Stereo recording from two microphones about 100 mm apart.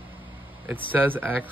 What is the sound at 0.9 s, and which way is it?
Speech, 20° right (ahead or behind).